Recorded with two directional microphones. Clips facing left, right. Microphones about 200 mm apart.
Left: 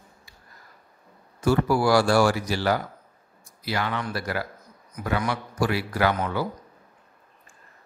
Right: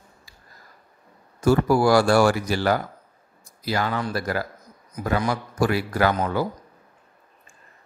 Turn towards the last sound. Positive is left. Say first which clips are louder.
# right 2 dB
turn(degrees=-40)  # may be behind; listen again after turning